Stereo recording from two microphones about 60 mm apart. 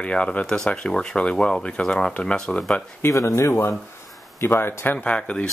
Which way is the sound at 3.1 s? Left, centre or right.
Left.